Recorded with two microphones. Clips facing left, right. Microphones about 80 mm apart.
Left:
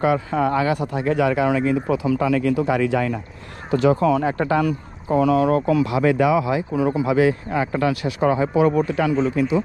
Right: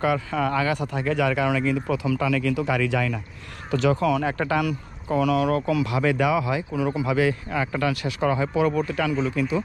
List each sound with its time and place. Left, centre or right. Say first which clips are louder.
0.0 s speech: left 4 dB; left